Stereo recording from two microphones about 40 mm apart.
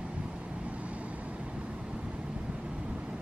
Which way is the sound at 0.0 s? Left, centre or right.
Right.